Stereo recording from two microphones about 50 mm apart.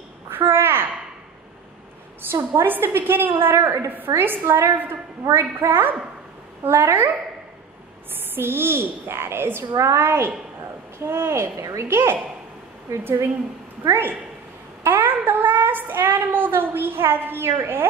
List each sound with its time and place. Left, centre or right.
0.3 s babbling: right
2.5 s a woman's voice: right
3.5 s a woman's voice: right
4.1 s a woman's voice: right
6.6 s a woman's voice: right
8.4 s a woman's voice: right
9.8 s a woman's voice: right
10.0 s speech: right
14.9 s child singing: right